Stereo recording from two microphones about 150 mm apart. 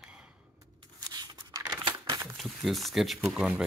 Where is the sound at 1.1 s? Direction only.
25° right (ahead or behind).